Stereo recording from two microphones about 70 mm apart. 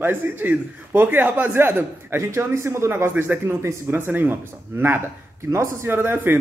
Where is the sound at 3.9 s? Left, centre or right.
Right.